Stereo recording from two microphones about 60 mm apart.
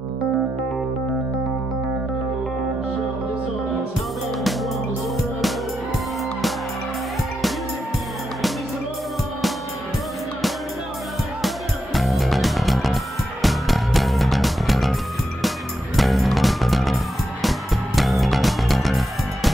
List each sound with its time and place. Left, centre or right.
11.4 s music: centre
16.0 s music: centre